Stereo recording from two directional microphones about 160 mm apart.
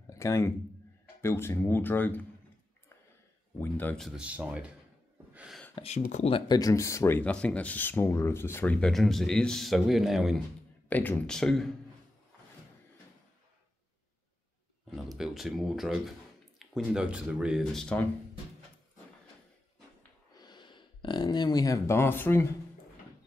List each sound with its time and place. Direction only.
0.0 s a sound: 20° left (ahead or behind)
1.2 s speech: 15° left (ahead or behind)
3.5 s speech: 10° left (ahead or behind)
4.2 s speech: 10° right (ahead or behind)
5.3 s gasp: 5° right (ahead or behind)
5.8 s speech: 40° left (ahead or behind)
6.5 s speech: 20° left (ahead or behind); by 10.4 s centre (ahead or behind)
10.9 s speech: 10° left (ahead or behind)
14.9 s speech: centre (ahead or behind)
20.3 s speech: 25° left (ahead or behind)